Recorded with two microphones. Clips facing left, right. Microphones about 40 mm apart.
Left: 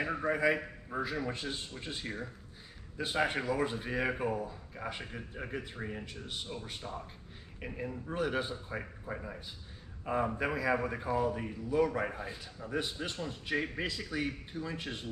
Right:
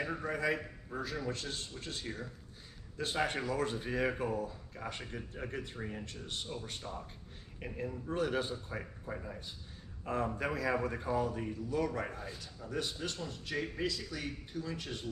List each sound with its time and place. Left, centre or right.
0.0 s a man's voice: centre